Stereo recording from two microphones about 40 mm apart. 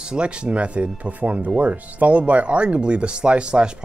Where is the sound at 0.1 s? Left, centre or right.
Right.